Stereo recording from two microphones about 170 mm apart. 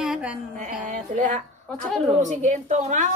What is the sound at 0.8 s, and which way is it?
Speech, 45° right (ahead or behind).